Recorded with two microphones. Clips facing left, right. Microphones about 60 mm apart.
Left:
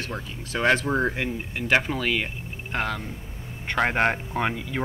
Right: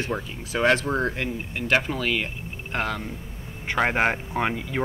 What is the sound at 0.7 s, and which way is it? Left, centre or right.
Speech, centre.